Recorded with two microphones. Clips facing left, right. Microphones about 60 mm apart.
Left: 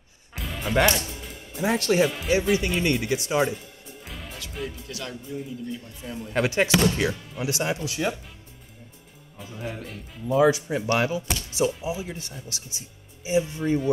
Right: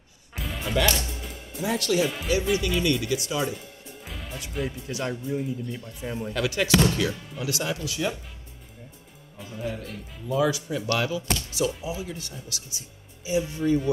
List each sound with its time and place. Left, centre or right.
0.3 s music: centre
0.7 s speech: left
4.0 s music: centre
4.8 s speech: right
6.3 s speech: left
10.2 s speech: left